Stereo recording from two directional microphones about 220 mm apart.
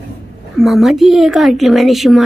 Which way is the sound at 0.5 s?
Centre (ahead or behind).